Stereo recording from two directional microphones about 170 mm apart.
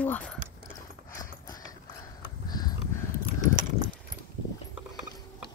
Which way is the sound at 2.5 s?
25° left (ahead or behind).